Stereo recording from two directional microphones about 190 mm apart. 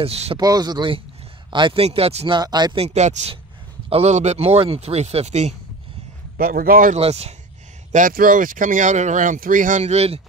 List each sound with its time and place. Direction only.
0.0 s speech: 30° right (ahead or behind)
0.4 s speech: 20° right (ahead or behind)
6.3 s speech: 50° right (ahead or behind)
7.0 s speech: 35° right (ahead or behind)
7.9 s speech: 45° right (ahead or behind)